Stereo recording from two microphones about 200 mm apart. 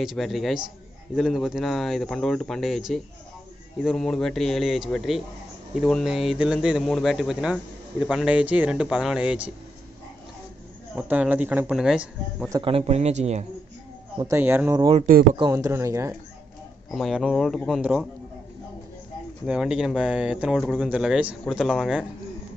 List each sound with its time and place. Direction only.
0.0 s speech: centre (ahead or behind)
11.0 s a man's voice: 5° right (ahead or behind)
12.4 s a man's voice: 25° right (ahead or behind)
14.1 s a man's voice: 15° right (ahead or behind)
16.9 s speech: centre (ahead or behind)
19.4 s speech: 5° right (ahead or behind)